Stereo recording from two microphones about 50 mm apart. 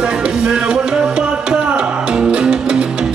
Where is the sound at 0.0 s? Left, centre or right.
Centre.